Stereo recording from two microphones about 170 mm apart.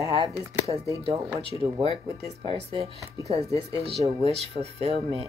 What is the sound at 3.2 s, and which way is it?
Speech, 20° left (ahead or behind).